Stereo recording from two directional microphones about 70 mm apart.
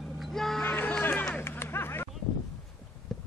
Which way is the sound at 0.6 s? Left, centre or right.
Left.